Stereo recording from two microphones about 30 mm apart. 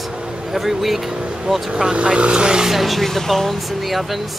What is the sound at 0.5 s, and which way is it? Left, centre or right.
Speech, centre.